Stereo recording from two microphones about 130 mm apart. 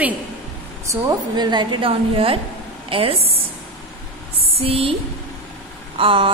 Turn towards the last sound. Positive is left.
turn(degrees=-40)  # may be behind; listen again after turning